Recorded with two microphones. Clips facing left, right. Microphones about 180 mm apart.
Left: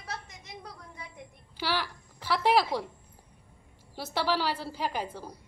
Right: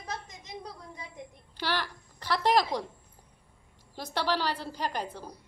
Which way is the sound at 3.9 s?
5° left (ahead or behind).